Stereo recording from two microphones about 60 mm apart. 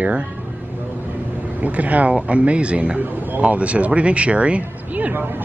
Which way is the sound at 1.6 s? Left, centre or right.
Right.